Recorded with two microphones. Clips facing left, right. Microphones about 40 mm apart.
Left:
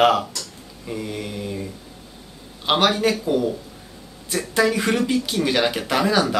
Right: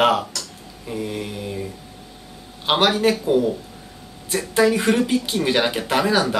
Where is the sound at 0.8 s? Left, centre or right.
Centre.